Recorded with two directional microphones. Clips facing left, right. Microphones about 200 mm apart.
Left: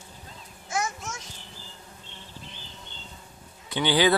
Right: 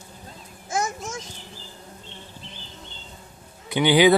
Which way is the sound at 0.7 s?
45° right (ahead or behind).